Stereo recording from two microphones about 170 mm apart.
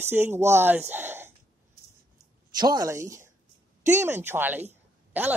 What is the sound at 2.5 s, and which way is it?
A woman's voice, 25° right (ahead or behind).